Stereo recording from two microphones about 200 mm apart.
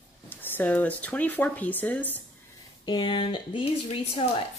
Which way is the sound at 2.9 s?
20° left (ahead or behind).